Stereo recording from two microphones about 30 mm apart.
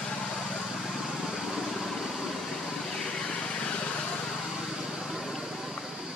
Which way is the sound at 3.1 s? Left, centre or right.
Left.